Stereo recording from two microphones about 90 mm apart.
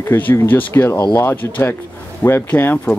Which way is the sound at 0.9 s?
30° left (ahead or behind).